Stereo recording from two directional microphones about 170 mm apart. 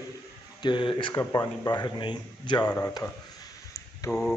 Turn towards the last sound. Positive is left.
turn(degrees=20)  # may be behind; listen again after turning